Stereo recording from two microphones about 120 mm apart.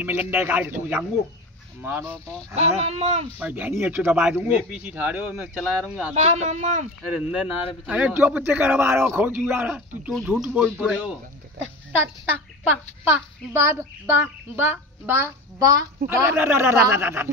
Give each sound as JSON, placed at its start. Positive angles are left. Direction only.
{"t": 0.0, "sound": "speech", "side_deg": -15}
{"t": 2.5, "sound": "speech", "side_deg": -65}
{"t": 3.3, "sound": "speech", "side_deg": -15}
{"t": 6.1, "sound": "speech", "side_deg": -70}
{"t": 7.2, "sound": "speech", "side_deg": -10}
{"t": 10.1, "sound": "speech", "side_deg": 0}
{"t": 13.0, "sound": "a child's voice", "side_deg": -20}
{"t": 15.6, "sound": "a child's voice", "side_deg": -25}